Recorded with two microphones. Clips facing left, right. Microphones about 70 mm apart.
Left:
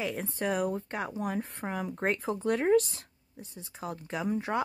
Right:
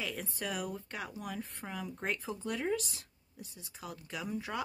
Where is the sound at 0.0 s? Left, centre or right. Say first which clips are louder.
Left 7 dB; left.